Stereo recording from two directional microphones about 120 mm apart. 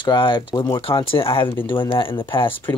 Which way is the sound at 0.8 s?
50° left (ahead or behind).